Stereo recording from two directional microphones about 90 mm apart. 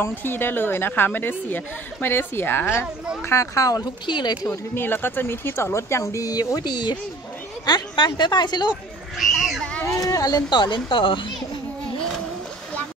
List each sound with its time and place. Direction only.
0.0 s a woman's voice: 25° left (ahead or behind)
3.3 s speech: 35° left (ahead or behind)
4.0 s speech: 55° left (ahead or behind)
4.7 s speech: 25° left (ahead or behind); by 8.7 s 55° left (ahead or behind)
9.2 s a sound: centre (ahead or behind)
10.0 s speech: 45° left (ahead or behind); by 11.3 s 70° left (ahead or behind)